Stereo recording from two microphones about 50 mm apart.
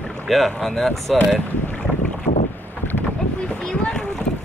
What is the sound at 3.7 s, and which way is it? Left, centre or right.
Boat, centre.